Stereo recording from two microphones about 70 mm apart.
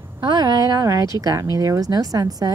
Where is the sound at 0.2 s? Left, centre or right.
Right.